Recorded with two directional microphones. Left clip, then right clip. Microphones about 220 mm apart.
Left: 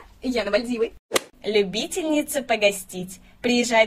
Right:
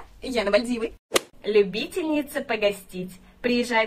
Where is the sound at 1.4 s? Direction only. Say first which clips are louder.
Right 1 dB; 35° left (ahead or behind).